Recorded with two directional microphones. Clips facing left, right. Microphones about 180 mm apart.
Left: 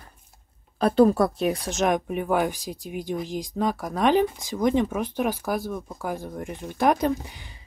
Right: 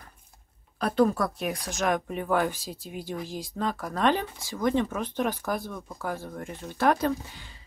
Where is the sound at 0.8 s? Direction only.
30° left (ahead or behind).